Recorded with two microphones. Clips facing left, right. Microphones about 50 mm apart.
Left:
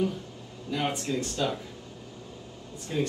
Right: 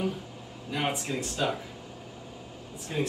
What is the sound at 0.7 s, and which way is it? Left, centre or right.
Speech, centre.